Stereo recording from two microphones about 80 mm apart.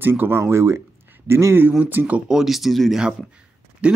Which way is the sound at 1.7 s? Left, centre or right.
Centre.